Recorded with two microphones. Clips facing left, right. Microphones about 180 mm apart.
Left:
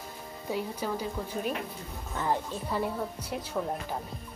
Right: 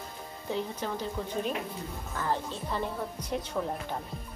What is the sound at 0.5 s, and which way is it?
A woman's voice, 10° left (ahead or behind).